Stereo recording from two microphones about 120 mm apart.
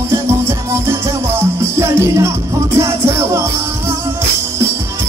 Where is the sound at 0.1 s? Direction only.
25° right (ahead or behind).